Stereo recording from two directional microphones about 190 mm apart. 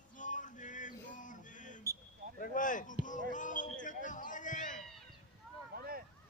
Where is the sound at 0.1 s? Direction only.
40° left (ahead or behind).